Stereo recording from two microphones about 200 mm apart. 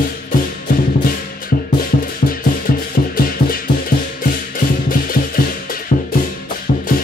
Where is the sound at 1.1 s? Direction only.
45° left (ahead or behind).